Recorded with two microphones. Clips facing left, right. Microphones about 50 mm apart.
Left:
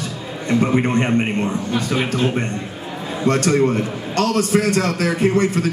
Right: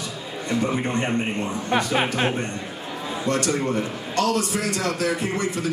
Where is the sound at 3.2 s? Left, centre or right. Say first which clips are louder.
Left 7 dB; left.